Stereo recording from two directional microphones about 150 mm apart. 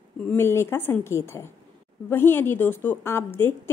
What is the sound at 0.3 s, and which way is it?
A woman's voice, 15° left (ahead or behind).